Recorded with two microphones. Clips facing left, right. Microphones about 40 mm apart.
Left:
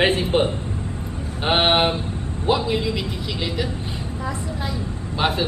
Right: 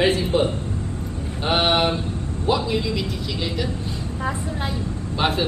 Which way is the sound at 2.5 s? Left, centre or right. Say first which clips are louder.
Left 1 dB; centre.